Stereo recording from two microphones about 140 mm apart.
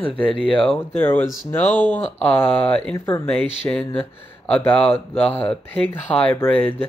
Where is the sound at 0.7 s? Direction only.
15° left (ahead or behind).